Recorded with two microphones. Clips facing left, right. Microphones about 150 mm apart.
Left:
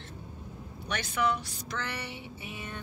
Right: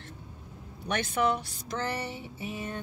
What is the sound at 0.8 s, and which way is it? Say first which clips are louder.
Speech: right 3 dB; 45° right (ahead or behind).